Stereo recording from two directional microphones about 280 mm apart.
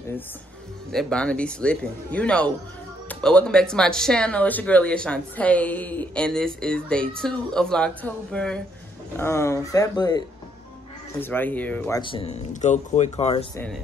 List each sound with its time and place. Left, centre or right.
0.9 s speech: centre
12.0 s speech: centre